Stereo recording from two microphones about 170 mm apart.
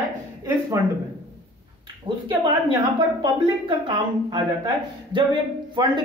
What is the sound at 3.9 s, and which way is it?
Speech, 30° right (ahead or behind).